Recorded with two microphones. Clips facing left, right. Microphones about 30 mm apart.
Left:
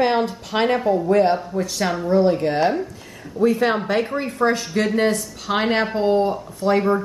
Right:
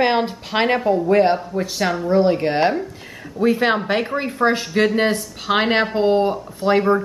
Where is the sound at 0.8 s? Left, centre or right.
Centre.